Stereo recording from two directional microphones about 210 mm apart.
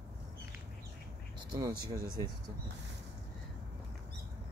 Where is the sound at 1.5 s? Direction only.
15° right (ahead or behind).